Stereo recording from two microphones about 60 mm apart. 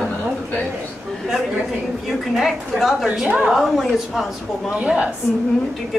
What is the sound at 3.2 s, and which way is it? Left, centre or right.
Speech, right.